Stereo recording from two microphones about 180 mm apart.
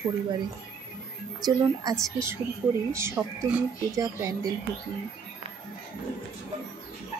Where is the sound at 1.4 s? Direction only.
20° right (ahead or behind).